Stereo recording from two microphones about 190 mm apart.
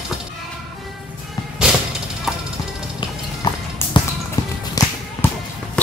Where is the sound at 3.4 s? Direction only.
20° left (ahead or behind).